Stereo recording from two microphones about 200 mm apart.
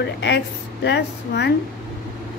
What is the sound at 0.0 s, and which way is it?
A woman's voice, 55° left (ahead or behind).